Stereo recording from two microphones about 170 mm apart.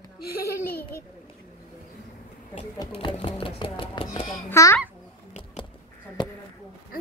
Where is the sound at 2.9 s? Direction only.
35° left (ahead or behind).